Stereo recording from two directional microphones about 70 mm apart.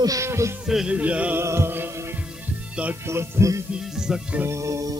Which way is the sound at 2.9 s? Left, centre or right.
Right.